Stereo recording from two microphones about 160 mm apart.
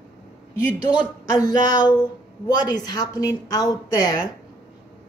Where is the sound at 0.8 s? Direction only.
25° left (ahead or behind).